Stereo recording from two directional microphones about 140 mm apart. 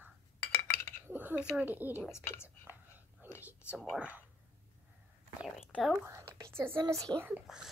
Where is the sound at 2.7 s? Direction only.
10° right (ahead or behind).